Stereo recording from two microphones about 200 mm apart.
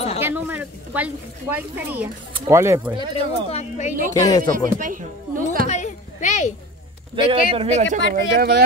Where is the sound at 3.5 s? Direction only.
35° left (ahead or behind).